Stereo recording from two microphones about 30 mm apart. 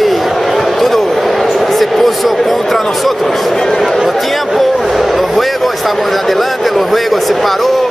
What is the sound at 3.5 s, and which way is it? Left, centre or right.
Speech, centre.